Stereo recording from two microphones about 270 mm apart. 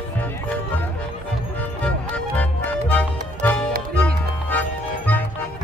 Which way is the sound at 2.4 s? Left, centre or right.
Centre.